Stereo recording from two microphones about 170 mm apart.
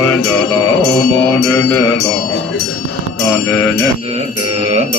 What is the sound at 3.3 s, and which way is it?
Music, 10° left (ahead or behind).